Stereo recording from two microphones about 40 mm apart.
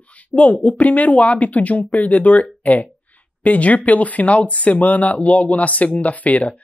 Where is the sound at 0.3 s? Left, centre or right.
Left.